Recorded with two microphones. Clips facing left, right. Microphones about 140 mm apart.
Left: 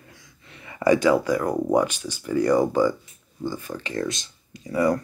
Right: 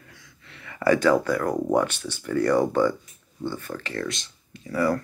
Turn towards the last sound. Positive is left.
turn(degrees=20)  # may be behind; listen again after turning